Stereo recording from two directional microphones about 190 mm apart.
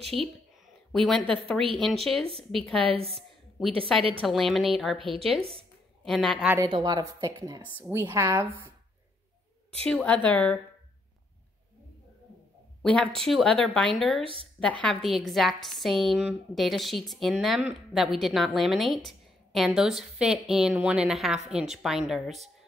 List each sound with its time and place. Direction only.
0.9 s a woman's voice: 5° left (ahead or behind)
2.8 s a woman's voice: 30° right (ahead or behind)
4.2 s a woman's voice: centre (ahead or behind)
4.9 s a woman's voice: 25° right (ahead or behind)
6.0 s a woman's voice: centre (ahead or behind)
6.7 s a woman's voice: 20° right (ahead or behind)
9.8 s a woman's voice: 5° left (ahead or behind)
12.8 s a woman's voice: 5° left (ahead or behind)
14.2 s a woman's voice: 30° right (ahead or behind)
14.6 s a woman's voice: 5° left (ahead or behind)